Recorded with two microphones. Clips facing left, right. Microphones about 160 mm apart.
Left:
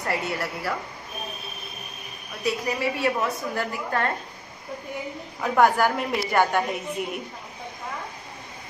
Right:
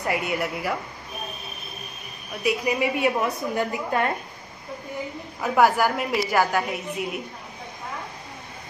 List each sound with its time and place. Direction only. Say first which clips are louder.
0.0 s a woman's voice: right 2 dB; 15° right (ahead or behind)
2.4 s a woman's voice: right 2 dB; 15° right (ahead or behind)
5.4 s a woman's voice: even; 5° right (ahead or behind)